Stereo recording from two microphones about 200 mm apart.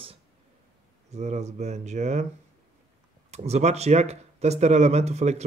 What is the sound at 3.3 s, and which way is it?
Speech, 35° right (ahead or behind).